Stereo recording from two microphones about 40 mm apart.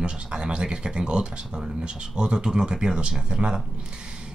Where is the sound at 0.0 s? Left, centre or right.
Right.